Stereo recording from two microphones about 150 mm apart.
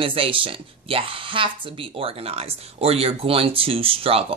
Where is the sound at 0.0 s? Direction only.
35° right (ahead or behind).